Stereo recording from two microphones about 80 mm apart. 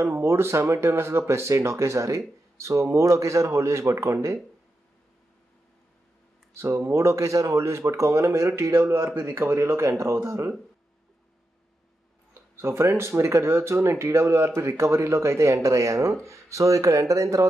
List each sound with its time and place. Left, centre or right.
0.0 s speech: right
6.5 s speech: right
12.5 s speech: right